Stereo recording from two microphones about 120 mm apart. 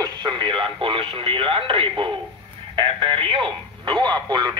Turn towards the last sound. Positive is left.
turn(degrees=-35)  # may be behind; listen again after turning